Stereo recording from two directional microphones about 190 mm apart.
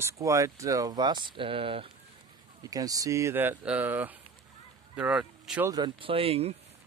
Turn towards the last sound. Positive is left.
turn(degrees=-30)  # may be behind; listen again after turning